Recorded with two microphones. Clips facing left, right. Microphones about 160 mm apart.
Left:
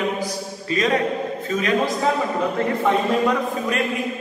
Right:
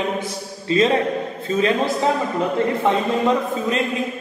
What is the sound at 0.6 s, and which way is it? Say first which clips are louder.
Speech: right 5 dB; 30° right (ahead or behind).